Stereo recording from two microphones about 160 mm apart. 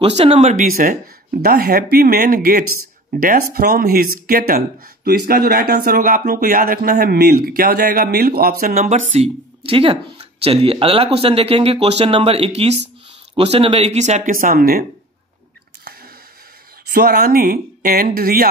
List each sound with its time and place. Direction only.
0.0 s speech: 40° right (ahead or behind); by 14.9 s 65° right (ahead or behind)
16.8 s speech: 75° right (ahead or behind)